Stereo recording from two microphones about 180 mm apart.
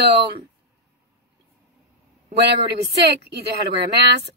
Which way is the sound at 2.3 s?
70° right (ahead or behind).